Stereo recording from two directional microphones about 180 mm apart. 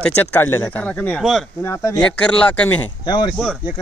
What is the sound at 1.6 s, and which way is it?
Speech, 15° left (ahead or behind).